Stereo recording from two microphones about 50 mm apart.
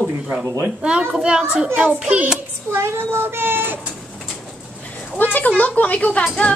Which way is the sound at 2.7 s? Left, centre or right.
Right.